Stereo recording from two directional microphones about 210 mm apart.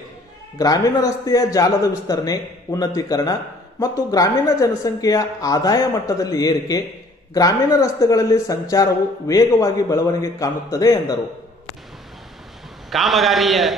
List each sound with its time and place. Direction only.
0.6 s speech: 15° left (ahead or behind)
12.9 s a man's voice: centre (ahead or behind)